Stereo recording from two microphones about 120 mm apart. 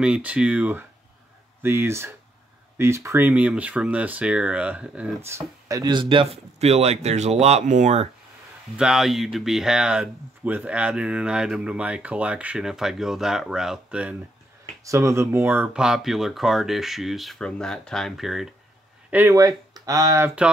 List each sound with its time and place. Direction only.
0.0 s speech: 10° right (ahead or behind)
5.2 s speech: 25° right (ahead or behind)
5.9 s a man's voice: 45° right (ahead or behind)
6.6 s speech: 60° right (ahead or behind); by 8.1 s 75° right (ahead or behind)
8.7 s speech: 5° right (ahead or behind)
14.9 s speech: 25° right (ahead or behind)
15.7 s speech: 5° right (ahead or behind)
19.0 s speech: 15° right (ahead or behind)
19.3 s speech: 30° right (ahead or behind)